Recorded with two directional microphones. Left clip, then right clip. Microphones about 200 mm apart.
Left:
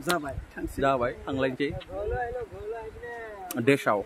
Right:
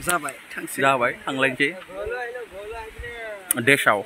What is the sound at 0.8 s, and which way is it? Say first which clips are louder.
Speech: right 6 dB; 5° right (ahead or behind).